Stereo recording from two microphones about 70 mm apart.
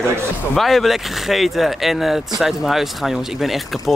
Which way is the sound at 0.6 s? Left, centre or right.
Centre.